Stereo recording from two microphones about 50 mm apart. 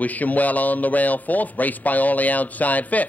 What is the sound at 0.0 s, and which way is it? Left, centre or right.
A man's voice, left.